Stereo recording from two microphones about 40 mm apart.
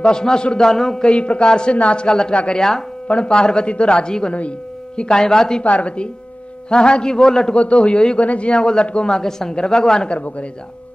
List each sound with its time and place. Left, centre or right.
0.0 s speech: centre
1.0 s speech: left
5.6 s a woman's voice: left
6.7 s speech: left
7.5 s speech: left